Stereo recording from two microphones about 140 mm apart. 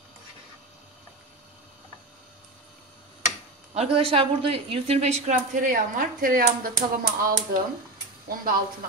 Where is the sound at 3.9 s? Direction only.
40° right (ahead or behind); by 6.7 s 90° right.